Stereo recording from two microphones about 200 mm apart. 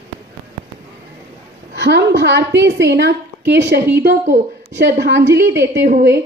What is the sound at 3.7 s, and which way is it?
Speech, 10° right (ahead or behind).